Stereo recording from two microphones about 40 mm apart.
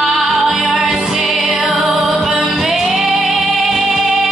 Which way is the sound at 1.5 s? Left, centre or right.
Right.